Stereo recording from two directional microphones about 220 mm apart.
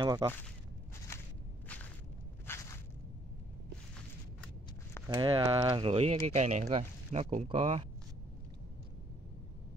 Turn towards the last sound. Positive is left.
turn(degrees=-25)  # may be behind; listen again after turning